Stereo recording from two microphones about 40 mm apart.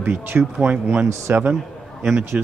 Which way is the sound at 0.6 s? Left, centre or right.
Right.